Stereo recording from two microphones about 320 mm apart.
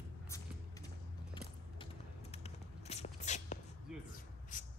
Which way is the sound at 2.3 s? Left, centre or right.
Centre.